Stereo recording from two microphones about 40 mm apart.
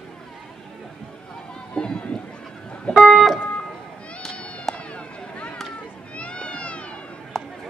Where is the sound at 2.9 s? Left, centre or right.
Centre.